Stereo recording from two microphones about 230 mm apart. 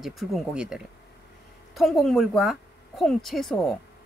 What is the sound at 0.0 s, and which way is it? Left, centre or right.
Speech, centre.